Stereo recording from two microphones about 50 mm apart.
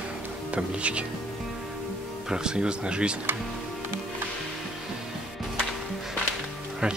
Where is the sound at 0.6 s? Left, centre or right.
Right.